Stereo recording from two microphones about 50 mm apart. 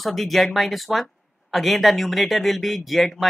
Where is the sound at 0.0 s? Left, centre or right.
Centre.